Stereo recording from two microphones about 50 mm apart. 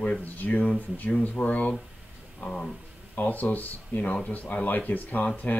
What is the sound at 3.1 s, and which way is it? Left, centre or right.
Speech, left.